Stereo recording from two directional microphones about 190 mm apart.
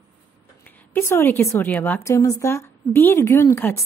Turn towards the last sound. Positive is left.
turn(degrees=10)  # may be behind; listen again after turning